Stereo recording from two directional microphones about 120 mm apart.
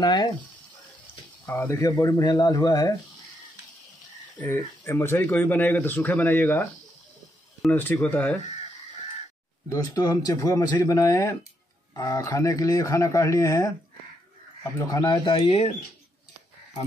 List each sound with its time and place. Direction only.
0.0 s speech: 35° left (ahead or behind)
1.4 s speech: 20° left (ahead or behind)
4.8 s a man's voice: 20° left (ahead or behind)
7.7 s a man's voice: 15° left (ahead or behind)
9.7 s speech: 30° left (ahead or behind)
14.9 s speech: 35° left (ahead or behind)